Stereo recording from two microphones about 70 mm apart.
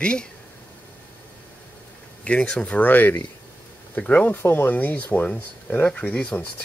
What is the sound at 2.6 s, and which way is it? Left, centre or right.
Speech, left.